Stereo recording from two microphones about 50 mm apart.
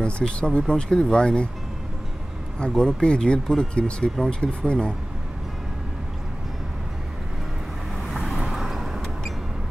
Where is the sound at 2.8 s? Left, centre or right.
Centre.